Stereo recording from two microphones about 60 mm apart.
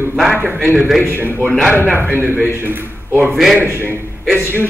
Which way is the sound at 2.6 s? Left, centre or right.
Right.